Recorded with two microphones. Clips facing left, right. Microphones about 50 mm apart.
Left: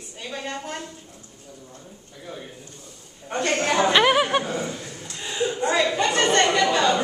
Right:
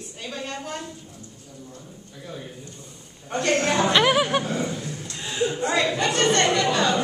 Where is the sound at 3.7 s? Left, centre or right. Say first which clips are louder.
Left 3 dB; centre.